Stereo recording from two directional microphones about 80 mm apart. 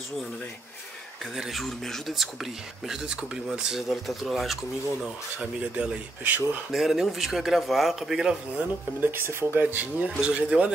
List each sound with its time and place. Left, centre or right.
1.2 s speech: centre
5.0 s speech: centre
6.7 s speech: centre
9.0 s speech: right; by 10.7 s centre